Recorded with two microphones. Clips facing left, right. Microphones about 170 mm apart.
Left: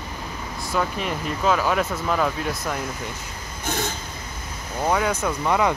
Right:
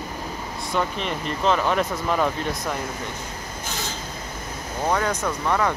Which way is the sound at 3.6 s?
55° left (ahead or behind).